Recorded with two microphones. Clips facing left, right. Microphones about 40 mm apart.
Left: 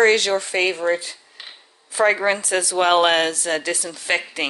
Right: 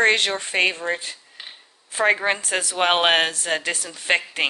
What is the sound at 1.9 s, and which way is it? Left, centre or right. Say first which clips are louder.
A woman's voice: left 2 dB; right.